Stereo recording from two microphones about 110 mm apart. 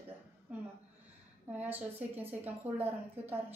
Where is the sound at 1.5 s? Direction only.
15° right (ahead or behind).